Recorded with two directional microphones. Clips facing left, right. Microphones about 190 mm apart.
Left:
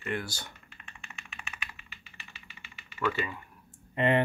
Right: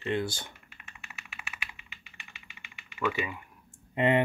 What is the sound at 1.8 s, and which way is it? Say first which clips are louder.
Typing: left 1 dB; 15° right (ahead or behind).